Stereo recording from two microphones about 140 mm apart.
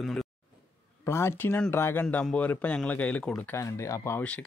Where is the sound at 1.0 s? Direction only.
20° left (ahead or behind).